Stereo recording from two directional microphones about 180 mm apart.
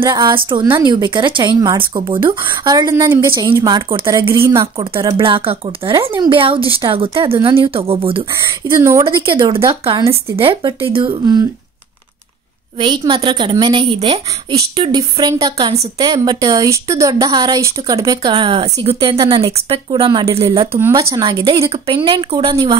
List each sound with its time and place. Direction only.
0.0 s speech: 25° right (ahead or behind)
5.1 s speech: 30° right (ahead or behind)
8.3 s speech: 15° right (ahead or behind)
9.0 s speech: 30° right (ahead or behind)
12.7 s speech: 25° right (ahead or behind)
14.8 s speech: 20° right (ahead or behind)
21.6 s speech: 30° right (ahead or behind)